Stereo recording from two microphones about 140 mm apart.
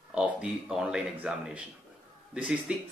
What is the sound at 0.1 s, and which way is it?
Speech, 5° right (ahead or behind).